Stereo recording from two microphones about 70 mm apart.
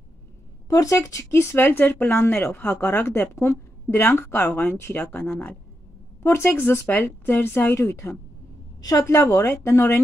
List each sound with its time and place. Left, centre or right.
0.7 s speech: left
7.7 s a woman's voice: left